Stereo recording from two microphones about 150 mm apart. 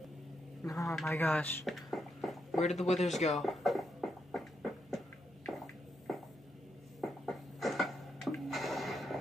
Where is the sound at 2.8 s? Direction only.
Centre (ahead or behind).